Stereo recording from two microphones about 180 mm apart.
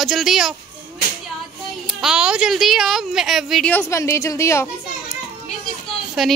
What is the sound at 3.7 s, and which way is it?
Speech, 15° left (ahead or behind).